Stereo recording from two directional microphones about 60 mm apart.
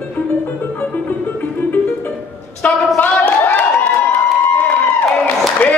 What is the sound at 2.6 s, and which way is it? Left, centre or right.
Speech, left.